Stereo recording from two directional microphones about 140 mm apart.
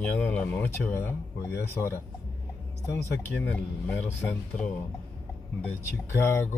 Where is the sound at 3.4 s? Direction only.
10° left (ahead or behind).